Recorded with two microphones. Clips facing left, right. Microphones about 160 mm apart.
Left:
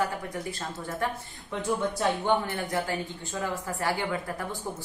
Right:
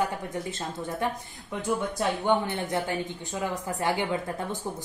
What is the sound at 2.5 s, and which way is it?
A woman's voice, 20° right (ahead or behind).